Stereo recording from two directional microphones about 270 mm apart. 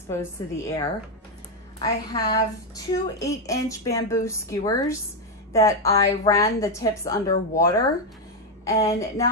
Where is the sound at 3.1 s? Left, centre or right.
Centre.